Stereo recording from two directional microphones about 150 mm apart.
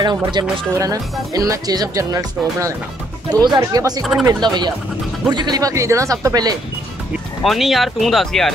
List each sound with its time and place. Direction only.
0.0 s speech: 30° right (ahead or behind)
4.0 s speech: centre (ahead or behind)
4.3 s speech: 30° right (ahead or behind)
7.4 s speech: centre (ahead or behind)